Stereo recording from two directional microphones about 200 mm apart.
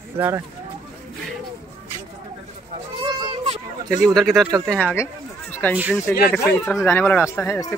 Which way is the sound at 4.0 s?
Centre (ahead or behind).